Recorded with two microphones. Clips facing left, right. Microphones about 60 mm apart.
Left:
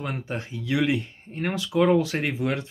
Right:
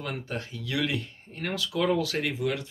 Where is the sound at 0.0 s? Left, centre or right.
Left.